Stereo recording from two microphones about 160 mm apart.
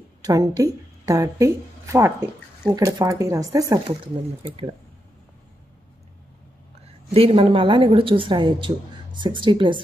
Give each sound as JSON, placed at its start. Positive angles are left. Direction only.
{"t": 0.2, "sound": "speech", "side_deg": -20}
{"t": 7.2, "sound": "a woman's voice", "side_deg": -35}